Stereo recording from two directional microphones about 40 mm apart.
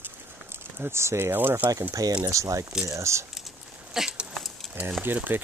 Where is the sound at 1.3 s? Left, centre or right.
Right.